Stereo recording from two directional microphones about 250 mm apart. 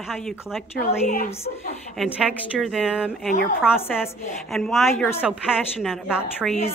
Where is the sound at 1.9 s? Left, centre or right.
Centre.